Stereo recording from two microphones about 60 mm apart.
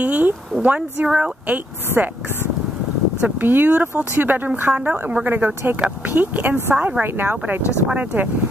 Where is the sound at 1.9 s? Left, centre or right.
Right.